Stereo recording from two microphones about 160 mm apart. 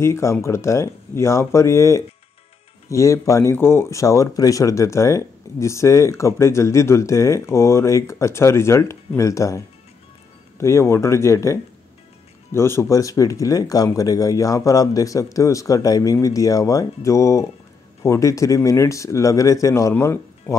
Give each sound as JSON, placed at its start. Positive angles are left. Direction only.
{"t": 0.0, "sound": "speech", "side_deg": 15}
{"t": 10.6, "sound": "speech", "side_deg": 15}